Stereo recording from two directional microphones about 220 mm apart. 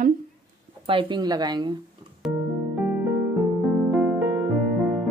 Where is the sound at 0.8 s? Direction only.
25° right (ahead or behind).